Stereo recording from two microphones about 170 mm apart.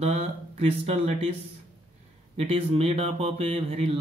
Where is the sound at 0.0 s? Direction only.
35° right (ahead or behind).